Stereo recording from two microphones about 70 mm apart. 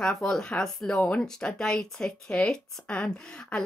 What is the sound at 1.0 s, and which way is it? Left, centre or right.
A woman's voice, centre.